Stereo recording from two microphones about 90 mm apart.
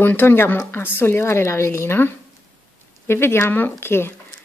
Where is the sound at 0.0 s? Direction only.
25° left (ahead or behind).